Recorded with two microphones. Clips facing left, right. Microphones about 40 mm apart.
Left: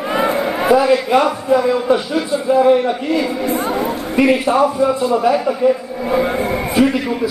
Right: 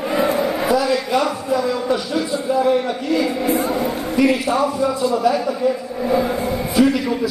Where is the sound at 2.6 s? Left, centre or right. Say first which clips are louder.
Left 5 dB; left.